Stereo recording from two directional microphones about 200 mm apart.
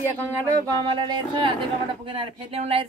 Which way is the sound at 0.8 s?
25° right (ahead or behind).